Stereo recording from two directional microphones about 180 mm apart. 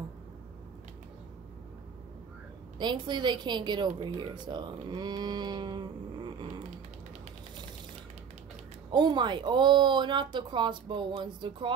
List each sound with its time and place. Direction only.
2.8 s a woman's voice: 25° right (ahead or behind)
8.9 s a woman's voice: 25° right (ahead or behind)